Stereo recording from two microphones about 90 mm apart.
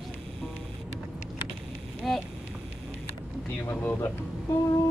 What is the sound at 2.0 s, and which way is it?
Speech, centre (ahead or behind).